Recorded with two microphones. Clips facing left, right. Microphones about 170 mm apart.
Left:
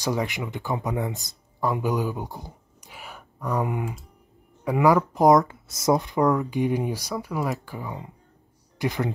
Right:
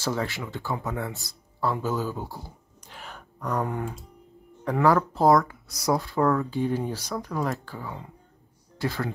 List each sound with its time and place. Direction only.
0.0 s speech: 15° left (ahead or behind)